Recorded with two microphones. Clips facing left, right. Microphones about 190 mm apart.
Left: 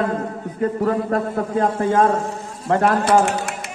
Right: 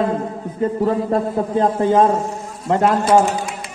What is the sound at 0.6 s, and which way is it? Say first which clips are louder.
A man's voice: right 2 dB; 25° right (ahead or behind).